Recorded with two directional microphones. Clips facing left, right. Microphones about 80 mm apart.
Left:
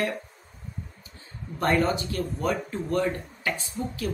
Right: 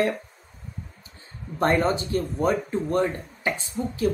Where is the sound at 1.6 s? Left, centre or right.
Right.